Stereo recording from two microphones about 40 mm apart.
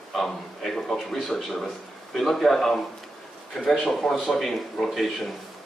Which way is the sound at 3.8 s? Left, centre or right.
Centre.